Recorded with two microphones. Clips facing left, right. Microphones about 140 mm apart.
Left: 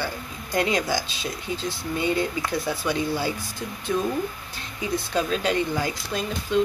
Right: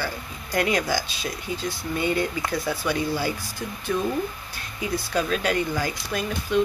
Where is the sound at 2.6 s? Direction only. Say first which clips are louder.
Right 1 dB; 15° left (ahead or behind).